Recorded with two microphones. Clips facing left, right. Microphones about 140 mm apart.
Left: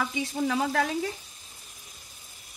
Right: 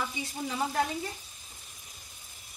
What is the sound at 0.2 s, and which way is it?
Frying, 85° left.